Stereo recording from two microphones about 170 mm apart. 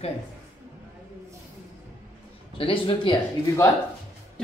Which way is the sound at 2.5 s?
30° left (ahead or behind).